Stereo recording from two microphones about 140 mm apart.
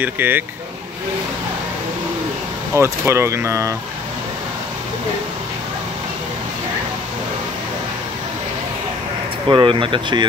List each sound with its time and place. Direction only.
0.0 s speech: 15° right (ahead or behind)
2.7 s speech: 20° right (ahead or behind)
9.5 s speech: 35° right (ahead or behind)